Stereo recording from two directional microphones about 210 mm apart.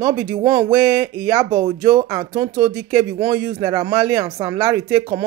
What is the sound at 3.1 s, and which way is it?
Speech, 15° right (ahead or behind).